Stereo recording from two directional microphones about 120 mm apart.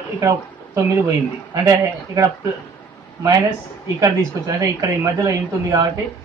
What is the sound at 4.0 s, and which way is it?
Speech, 25° right (ahead or behind).